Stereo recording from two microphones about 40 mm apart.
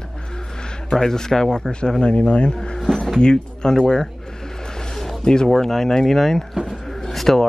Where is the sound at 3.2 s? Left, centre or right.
Left.